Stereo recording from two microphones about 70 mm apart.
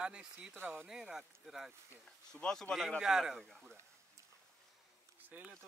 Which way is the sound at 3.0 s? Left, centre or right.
Centre.